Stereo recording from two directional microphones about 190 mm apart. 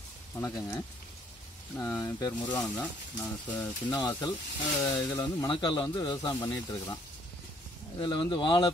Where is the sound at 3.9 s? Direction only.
20° left (ahead or behind).